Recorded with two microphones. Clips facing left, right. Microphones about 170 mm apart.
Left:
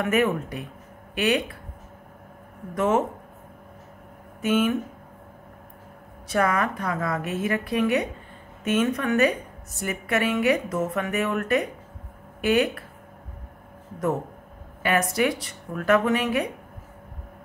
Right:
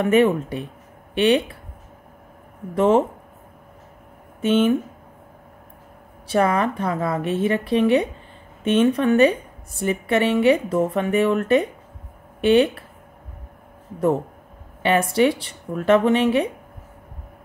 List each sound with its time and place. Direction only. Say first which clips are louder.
0.0 s a woman's voice: right 6 dB; 30° right (ahead or behind)
2.7 s speech: right 6 dB; 30° right (ahead or behind)
4.4 s a woman's voice: right 5 dB; 30° right (ahead or behind)
6.2 s a woman's voice: right 4 dB; 30° right (ahead or behind)
14.8 s a woman's voice: right 5 dB; 30° right (ahead or behind)